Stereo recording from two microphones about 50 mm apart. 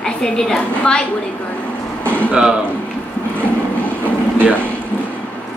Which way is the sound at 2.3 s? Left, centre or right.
Centre.